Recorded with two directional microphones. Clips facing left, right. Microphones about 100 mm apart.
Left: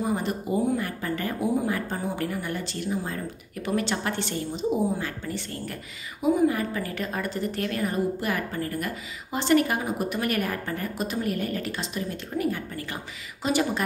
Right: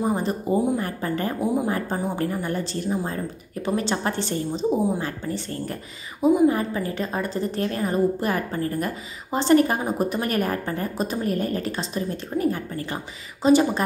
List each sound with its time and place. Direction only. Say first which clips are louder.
0.0 s a woman's voice: right 3 dB; 30° right (ahead or behind)